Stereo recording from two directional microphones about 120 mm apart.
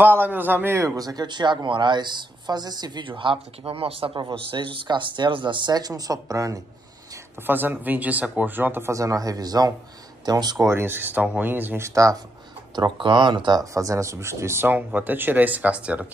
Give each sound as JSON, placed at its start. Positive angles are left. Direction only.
{"t": 0.0, "sound": "a man's voice", "side_deg": -15}
{"t": 7.4, "sound": "a man's voice", "side_deg": -15}
{"t": 10.7, "sound": "speech", "side_deg": -20}
{"t": 12.7, "sound": "speech", "side_deg": -40}